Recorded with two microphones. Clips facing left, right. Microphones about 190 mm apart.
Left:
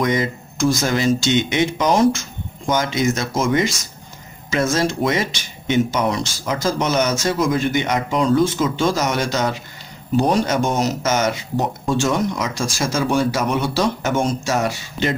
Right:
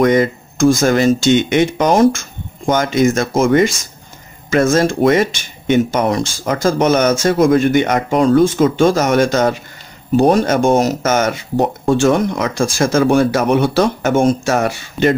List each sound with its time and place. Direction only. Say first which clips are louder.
0.0 s speech: right 7 dB; 55° right (ahead or behind)